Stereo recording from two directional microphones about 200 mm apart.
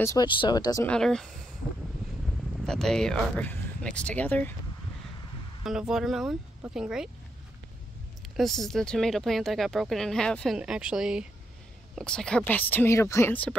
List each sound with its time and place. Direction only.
0.0 s speech: 20° left (ahead or behind)
0.8 s speech: 5° left (ahead or behind)
2.2 s speech: centre (ahead or behind)
5.6 s speech: 5° right (ahead or behind)
8.4 s speech: centre (ahead or behind)